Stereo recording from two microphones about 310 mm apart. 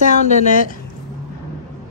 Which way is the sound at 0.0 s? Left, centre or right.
Left.